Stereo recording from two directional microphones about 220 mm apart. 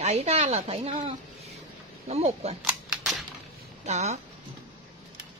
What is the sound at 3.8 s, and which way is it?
Speech, 30° right (ahead or behind).